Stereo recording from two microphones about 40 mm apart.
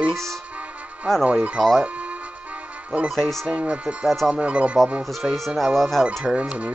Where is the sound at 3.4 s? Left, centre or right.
Right.